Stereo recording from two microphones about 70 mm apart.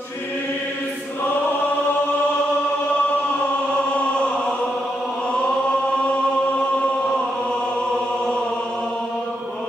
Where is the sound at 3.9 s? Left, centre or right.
Centre.